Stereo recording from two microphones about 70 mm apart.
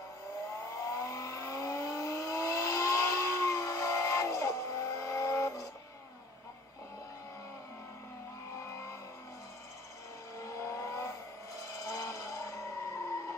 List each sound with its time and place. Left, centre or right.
0.7 s vehicle: left
8.5 s vehicle: left
10.3 s vehicle: left